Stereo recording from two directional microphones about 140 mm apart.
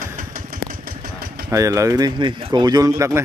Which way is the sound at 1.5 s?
20° right (ahead or behind).